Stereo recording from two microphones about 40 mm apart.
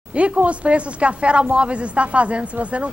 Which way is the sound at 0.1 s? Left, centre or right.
Right.